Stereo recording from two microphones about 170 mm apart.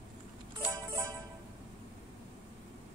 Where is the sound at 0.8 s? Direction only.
20° right (ahead or behind).